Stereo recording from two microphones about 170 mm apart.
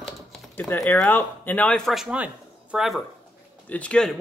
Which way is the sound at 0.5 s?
10° left (ahead or behind).